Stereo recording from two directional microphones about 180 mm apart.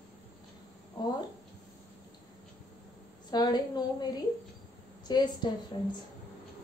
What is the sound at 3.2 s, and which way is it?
A woman's voice, 25° left (ahead or behind).